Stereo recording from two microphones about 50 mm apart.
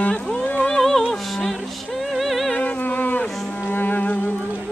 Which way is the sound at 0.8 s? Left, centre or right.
Centre.